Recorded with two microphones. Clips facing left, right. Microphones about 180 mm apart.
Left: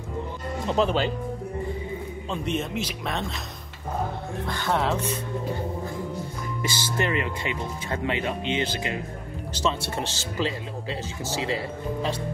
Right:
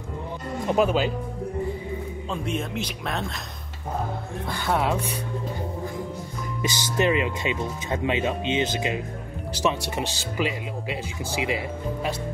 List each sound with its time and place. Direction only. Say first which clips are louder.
0.7 s speech: right 2 dB; 10° right (ahead or behind)
2.3 s speech: left 1 dB; centre (ahead or behind)
4.5 s speech: right 1 dB; 10° right (ahead or behind)
6.6 s speech: right 4 dB; 20° right (ahead or behind)